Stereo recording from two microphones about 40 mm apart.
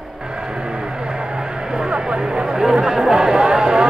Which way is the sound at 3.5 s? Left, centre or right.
Centre.